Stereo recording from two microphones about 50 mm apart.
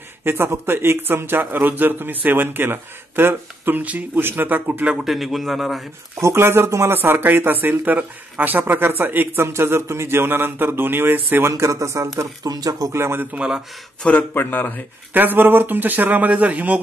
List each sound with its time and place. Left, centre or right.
0.2 s speech: right
5.0 s a man's voice: centre
6.2 s speech: right
11.5 s speech: right
12.9 s speech: right
14.3 s speech: left
15.1 s a man's voice: right